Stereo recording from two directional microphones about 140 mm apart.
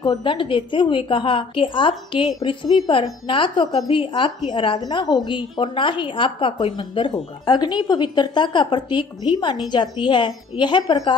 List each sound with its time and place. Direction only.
0.0 s a woman's voice: 30° left (ahead or behind)